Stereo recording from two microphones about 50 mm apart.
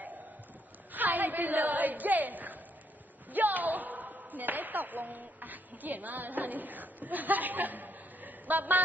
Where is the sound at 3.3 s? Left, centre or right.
Right.